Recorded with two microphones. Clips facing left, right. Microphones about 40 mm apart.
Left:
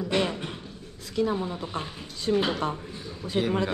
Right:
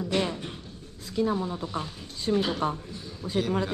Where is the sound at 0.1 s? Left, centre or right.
Left.